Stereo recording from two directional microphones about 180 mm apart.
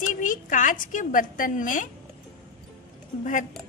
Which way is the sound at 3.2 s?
45° left (ahead or behind).